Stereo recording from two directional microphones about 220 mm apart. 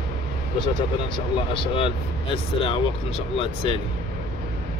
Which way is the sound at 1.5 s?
25° left (ahead or behind).